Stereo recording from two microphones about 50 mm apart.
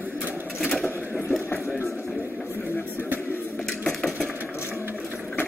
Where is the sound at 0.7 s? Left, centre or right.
Centre.